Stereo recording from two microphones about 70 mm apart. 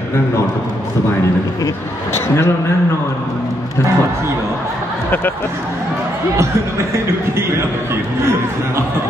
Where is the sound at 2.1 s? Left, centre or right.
Left.